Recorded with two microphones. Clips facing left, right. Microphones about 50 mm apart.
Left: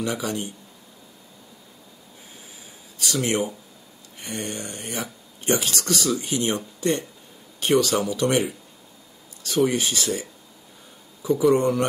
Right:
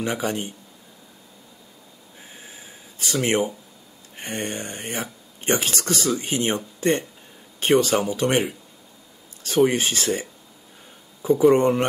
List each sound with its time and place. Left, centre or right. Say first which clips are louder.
0.0 s speech: right 1 dB; right
3.0 s speech: right 2 dB; right
11.2 s speech: right 3 dB; right